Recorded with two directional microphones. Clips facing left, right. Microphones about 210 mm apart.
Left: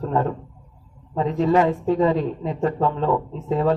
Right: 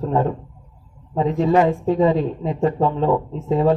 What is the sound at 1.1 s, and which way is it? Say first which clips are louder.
Speech: right 2 dB; 25° right (ahead or behind).